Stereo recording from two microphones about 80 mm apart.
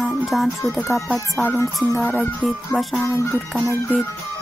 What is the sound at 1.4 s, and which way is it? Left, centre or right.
Music, left.